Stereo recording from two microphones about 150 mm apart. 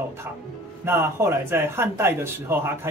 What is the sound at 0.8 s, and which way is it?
Speech, 15° right (ahead or behind).